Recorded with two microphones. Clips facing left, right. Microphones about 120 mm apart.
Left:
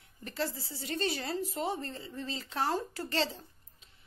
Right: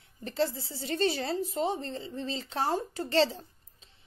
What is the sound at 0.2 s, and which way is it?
A woman's voice, 30° right (ahead or behind).